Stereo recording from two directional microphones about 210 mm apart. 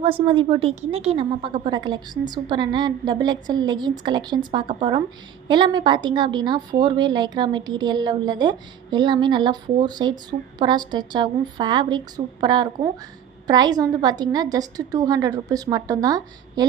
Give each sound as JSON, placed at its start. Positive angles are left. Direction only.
{"t": 0.0, "sound": "a woman's voice", "side_deg": -25}